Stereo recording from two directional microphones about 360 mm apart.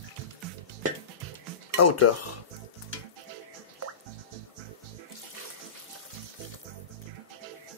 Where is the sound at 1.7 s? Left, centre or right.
Left.